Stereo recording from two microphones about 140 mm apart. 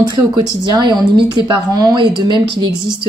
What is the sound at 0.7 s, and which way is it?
Speech, 35° right (ahead or behind).